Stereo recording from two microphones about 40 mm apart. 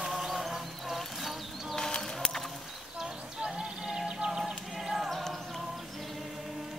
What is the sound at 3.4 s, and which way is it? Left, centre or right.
Music, centre.